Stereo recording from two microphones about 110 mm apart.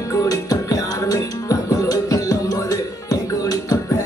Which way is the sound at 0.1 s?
30° left (ahead or behind).